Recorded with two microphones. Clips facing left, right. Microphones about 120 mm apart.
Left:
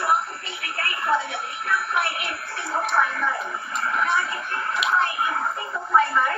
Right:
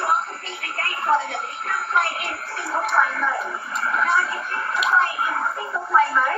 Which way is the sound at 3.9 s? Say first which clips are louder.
Right 2 dB; 40° right (ahead or behind).